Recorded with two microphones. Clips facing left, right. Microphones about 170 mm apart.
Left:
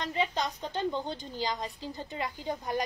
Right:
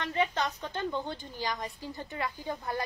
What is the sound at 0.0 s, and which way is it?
A woman's voice, 15° left (ahead or behind).